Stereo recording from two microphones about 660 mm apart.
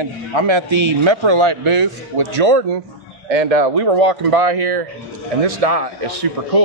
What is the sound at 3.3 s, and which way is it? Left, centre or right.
A man's voice, right.